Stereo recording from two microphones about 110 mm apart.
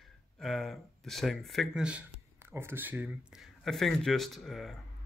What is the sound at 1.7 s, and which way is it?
Speech, 10° right (ahead or behind).